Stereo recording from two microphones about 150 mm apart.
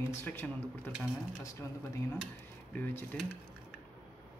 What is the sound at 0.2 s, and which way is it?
Speech, 15° left (ahead or behind).